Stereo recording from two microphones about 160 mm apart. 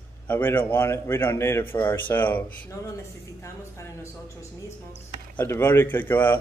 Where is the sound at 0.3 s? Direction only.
10° left (ahead or behind).